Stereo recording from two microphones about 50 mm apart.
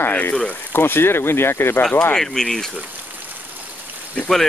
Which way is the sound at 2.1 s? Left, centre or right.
Centre.